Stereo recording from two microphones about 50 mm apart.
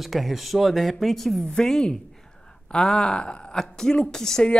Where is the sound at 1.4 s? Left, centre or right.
Centre.